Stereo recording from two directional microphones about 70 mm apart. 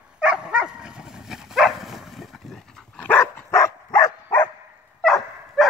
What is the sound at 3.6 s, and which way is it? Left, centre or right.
Dog, left.